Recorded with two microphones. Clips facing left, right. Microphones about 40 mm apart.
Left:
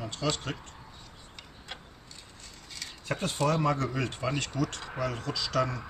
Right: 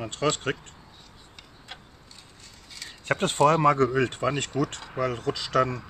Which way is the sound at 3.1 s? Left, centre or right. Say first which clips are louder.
Right 8 dB; right.